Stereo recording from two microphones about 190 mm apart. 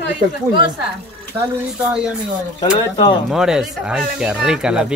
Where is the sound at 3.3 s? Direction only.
5° right (ahead or behind).